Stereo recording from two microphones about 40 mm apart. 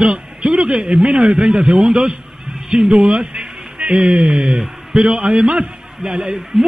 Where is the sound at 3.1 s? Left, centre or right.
Centre.